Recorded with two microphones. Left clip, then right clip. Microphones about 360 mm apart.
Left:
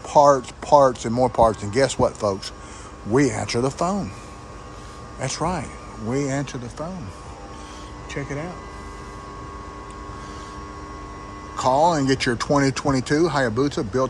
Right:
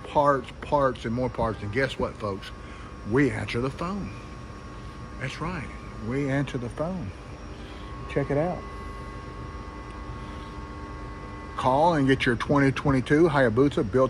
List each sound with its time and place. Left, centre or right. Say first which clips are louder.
0.1 s speech: left 7 dB; centre
5.2 s speech: left 8 dB; centre
8.1 s speech: right 5 dB; centre
11.5 s speech: left 4 dB; centre